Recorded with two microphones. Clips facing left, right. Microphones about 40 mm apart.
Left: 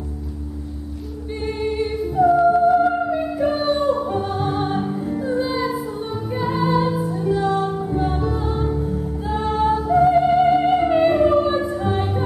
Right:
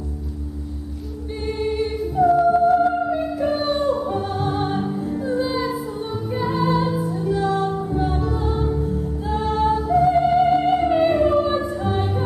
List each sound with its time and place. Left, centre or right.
1.4 s music: centre
4.8 s music: centre
5.2 s music: centre